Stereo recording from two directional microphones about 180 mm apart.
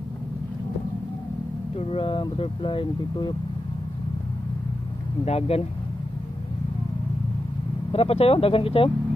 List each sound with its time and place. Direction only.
1.8 s speech: 30° left (ahead or behind)
5.2 s speech: 35° left (ahead or behind)
7.9 s speech: 35° left (ahead or behind)